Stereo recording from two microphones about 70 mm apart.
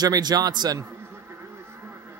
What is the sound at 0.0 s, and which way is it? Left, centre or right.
Speech, right.